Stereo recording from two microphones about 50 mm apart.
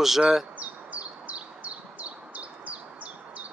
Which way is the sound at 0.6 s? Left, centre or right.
Right.